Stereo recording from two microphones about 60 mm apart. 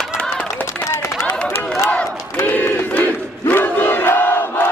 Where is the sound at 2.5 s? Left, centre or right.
Left.